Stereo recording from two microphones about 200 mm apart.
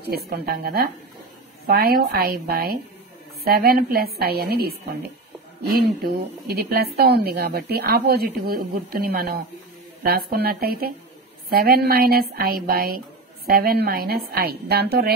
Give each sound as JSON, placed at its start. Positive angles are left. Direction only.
{"t": 0.0, "sound": "a woman's voice", "side_deg": -55}